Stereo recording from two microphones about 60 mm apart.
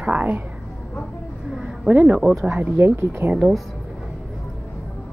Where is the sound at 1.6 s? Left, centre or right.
Right.